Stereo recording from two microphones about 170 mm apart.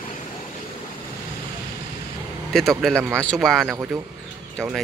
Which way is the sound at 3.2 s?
5° left (ahead or behind).